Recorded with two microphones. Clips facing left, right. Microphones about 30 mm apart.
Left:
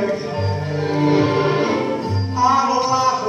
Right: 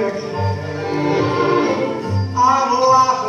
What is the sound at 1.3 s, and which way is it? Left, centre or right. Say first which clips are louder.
Music: right 2 dB; centre.